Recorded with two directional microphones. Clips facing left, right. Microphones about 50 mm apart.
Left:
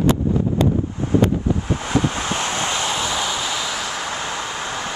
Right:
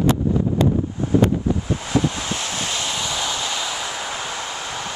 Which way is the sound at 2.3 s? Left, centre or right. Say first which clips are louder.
Left 4 dB; left.